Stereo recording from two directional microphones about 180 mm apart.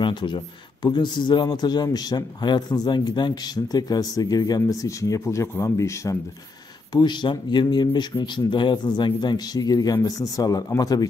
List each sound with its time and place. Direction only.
0.0 s speech: 25° left (ahead or behind)